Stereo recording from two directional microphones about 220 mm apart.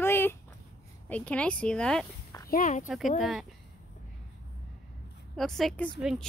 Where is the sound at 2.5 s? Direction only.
35° left (ahead or behind).